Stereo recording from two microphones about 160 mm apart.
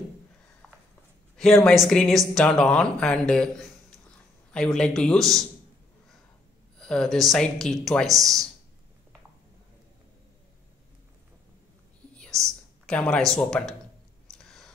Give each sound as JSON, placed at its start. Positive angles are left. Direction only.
{"t": 1.3, "sound": "speech", "side_deg": 5}
{"t": 6.8, "sound": "speech", "side_deg": 5}
{"t": 12.1, "sound": "whispering", "side_deg": 5}
{"t": 12.8, "sound": "speech", "side_deg": 5}
{"t": 14.3, "sound": "a sound", "side_deg": 5}